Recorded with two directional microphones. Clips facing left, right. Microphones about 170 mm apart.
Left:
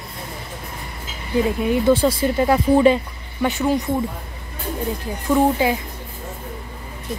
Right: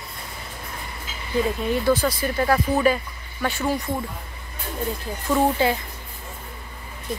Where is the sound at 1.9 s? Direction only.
25° left (ahead or behind).